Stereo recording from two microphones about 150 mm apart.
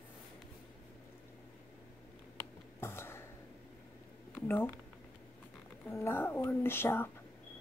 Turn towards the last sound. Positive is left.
turn(degrees=15)  # may be behind; listen again after turning